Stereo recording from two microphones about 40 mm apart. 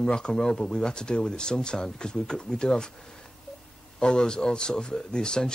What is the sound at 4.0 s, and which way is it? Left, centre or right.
Speech, left.